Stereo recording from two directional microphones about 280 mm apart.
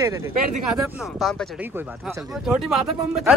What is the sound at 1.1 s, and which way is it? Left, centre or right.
Speech, centre.